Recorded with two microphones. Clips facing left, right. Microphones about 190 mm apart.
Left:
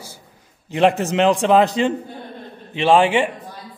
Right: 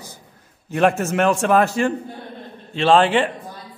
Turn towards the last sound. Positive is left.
turn(degrees=15)  # may be behind; listen again after turning